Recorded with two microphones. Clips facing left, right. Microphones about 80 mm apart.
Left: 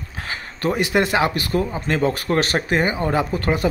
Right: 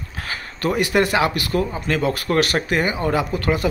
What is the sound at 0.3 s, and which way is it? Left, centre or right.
Speech, left.